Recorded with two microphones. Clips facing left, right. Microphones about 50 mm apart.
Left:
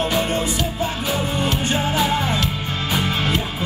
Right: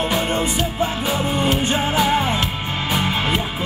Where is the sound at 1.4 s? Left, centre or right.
Right.